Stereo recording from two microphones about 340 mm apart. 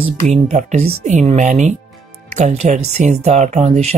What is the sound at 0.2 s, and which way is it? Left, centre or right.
Speech, centre.